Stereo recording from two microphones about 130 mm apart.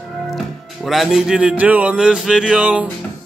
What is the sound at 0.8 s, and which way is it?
Speech, 5° right (ahead or behind).